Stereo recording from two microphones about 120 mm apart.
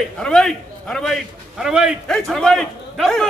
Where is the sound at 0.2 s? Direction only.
5° left (ahead or behind).